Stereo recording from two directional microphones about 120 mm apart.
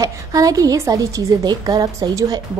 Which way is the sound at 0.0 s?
30° right (ahead or behind).